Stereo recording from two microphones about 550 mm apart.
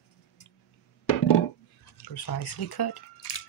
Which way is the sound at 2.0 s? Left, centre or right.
Left.